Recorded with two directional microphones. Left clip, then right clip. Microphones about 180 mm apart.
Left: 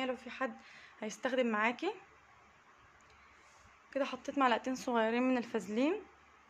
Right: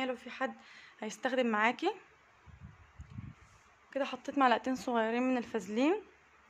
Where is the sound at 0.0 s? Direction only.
15° right (ahead or behind).